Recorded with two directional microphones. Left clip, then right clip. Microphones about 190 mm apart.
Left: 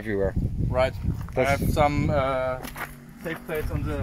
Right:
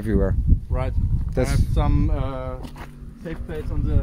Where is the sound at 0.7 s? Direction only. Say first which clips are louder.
Left 9 dB; 20° left (ahead or behind); by 3.9 s centre (ahead or behind).